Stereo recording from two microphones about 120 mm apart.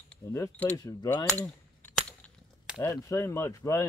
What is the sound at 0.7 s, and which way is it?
Speech, 30° left (ahead or behind).